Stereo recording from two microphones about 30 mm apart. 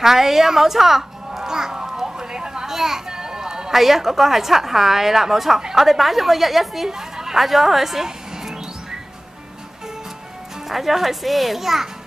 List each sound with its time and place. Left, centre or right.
0.0 s music: centre
3.7 s a woman's voice: centre
7.4 s a woman's voice: centre
10.7 s a woman's voice: centre